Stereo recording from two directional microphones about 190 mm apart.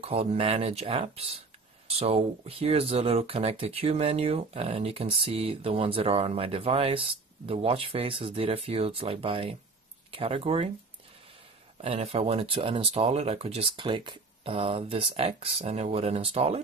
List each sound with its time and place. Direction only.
0.0 s speech: 30° right (ahead or behind)
11.8 s speech: 30° right (ahead or behind)